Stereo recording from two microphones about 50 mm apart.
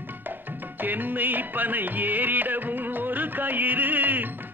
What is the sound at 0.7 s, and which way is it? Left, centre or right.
Music, right.